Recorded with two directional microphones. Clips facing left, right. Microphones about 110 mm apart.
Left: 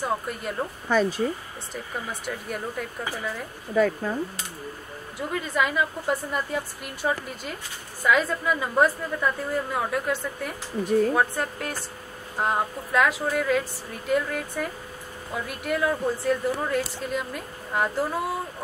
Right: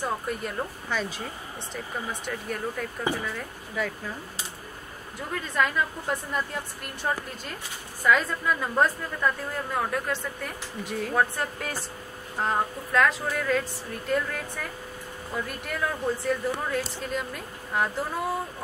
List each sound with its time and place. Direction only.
0.0 s speech: centre (ahead or behind)
0.8 s speech: 40° left (ahead or behind)
2.2 s speech: 5° left (ahead or behind)
3.7 s speech: 45° left (ahead or behind)
5.3 s speech: 5° left (ahead or behind)